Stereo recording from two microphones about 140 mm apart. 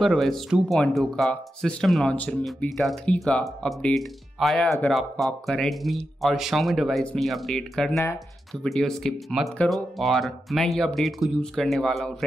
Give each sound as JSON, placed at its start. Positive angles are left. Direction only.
{"t": 0.0, "sound": "speech", "side_deg": 0}